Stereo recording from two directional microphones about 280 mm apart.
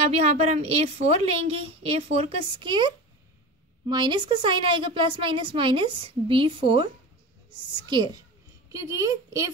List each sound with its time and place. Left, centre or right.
0.1 s a woman's voice: right
3.9 s a woman's voice: centre